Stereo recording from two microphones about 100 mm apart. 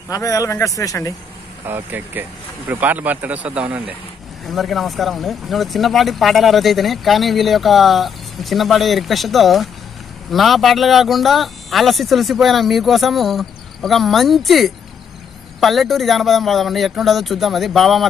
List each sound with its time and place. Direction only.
0.1 s speech: 35° left (ahead or behind)
1.7 s speech: 20° right (ahead or behind)
4.5 s speech: centre (ahead or behind)